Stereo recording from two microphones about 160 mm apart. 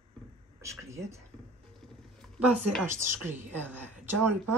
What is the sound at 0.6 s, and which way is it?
Speech, 20° right (ahead or behind).